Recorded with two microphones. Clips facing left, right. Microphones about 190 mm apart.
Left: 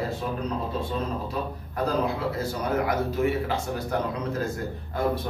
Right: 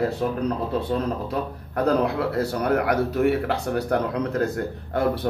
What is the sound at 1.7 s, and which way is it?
Speech, 65° right (ahead or behind).